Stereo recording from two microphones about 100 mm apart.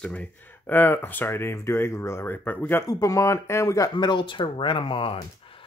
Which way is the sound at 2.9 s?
35° left (ahead or behind).